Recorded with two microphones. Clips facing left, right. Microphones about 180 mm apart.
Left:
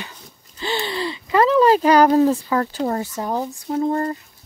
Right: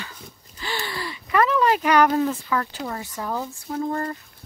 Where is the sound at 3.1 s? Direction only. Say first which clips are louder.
Left 5 dB; 25° left (ahead or behind).